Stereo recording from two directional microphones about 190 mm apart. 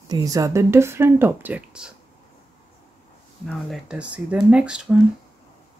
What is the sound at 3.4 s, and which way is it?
Speech, 5° right (ahead or behind).